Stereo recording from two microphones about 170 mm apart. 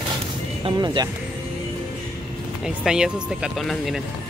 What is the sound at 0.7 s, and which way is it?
Speech, 25° right (ahead or behind).